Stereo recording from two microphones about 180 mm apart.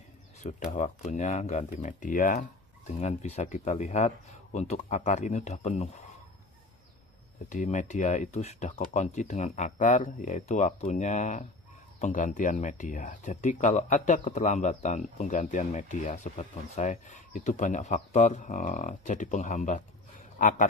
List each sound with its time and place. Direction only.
0.4 s speech: 40° left (ahead or behind)
7.4 s speech: 45° left (ahead or behind)